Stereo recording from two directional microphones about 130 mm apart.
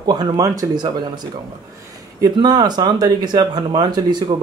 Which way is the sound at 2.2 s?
30° right (ahead or behind).